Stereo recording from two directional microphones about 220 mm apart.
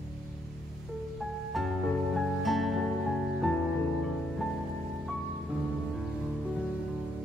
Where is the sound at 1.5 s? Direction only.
Centre (ahead or behind).